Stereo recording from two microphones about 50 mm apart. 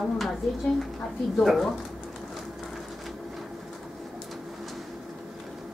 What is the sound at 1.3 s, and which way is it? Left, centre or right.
Speech, centre.